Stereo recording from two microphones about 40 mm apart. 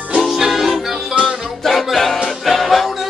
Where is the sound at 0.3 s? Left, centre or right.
Centre.